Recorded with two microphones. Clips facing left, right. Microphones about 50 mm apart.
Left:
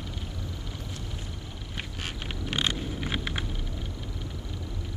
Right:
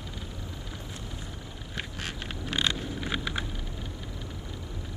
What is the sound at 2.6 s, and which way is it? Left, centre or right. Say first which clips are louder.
Vehicle: even; left.